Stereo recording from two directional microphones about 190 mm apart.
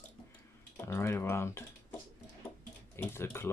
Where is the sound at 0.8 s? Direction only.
15° left (ahead or behind).